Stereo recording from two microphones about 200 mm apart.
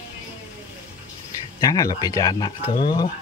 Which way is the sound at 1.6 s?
20° left (ahead or behind).